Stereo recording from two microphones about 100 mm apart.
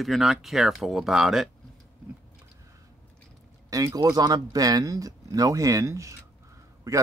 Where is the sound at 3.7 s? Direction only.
35° right (ahead or behind).